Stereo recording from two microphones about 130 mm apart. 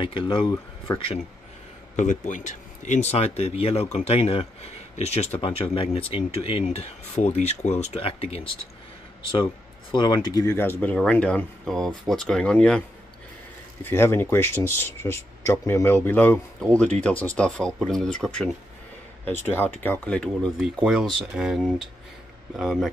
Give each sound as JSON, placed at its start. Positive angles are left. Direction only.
{"t": 0.0, "sound": "speech", "side_deg": 40}
{"t": 2.0, "sound": "speech", "side_deg": 70}
{"t": 9.3, "sound": "speech", "side_deg": 35}
{"t": 13.8, "sound": "speech", "side_deg": 20}
{"t": 19.4, "sound": "speech", "side_deg": 15}